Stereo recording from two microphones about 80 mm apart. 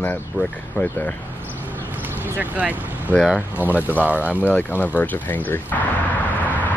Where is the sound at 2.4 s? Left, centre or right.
Centre.